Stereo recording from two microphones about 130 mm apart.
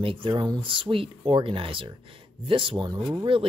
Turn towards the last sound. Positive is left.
turn(degrees=-40)  # may be behind; listen again after turning